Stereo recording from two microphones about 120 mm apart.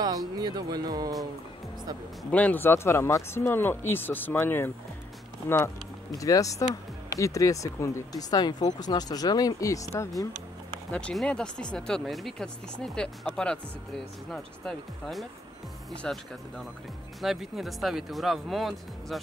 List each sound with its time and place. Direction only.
0.0 s speech: 30° right (ahead or behind)
2.3 s speech: 15° left (ahead or behind)
10.9 s speech: 10° left (ahead or behind)